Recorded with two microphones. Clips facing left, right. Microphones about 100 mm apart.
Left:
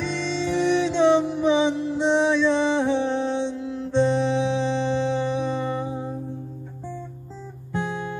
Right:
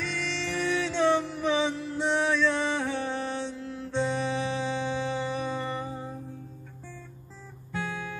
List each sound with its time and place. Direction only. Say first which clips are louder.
0.0 s music: left 7 dB; 20° left (ahead or behind)
7.7 s guitar: left 6 dB; 20° left (ahead or behind)